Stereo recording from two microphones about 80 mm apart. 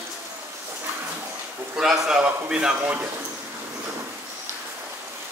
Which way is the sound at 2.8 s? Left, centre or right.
Right.